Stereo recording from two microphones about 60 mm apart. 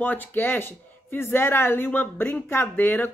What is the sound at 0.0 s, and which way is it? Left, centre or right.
A woman's voice, left.